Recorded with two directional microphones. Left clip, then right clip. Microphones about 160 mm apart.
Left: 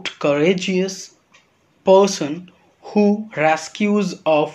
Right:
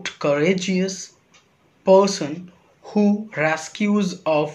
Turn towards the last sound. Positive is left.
turn(degrees=35)  # may be behind; listen again after turning